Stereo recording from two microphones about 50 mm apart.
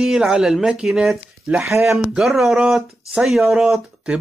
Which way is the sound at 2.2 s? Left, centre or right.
Centre.